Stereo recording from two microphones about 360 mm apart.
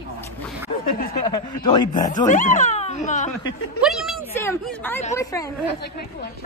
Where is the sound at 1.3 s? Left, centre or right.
Centre.